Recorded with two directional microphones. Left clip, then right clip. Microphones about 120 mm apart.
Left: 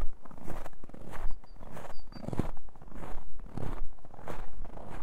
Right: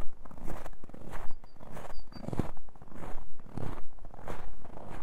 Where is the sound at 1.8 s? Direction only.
10° left (ahead or behind).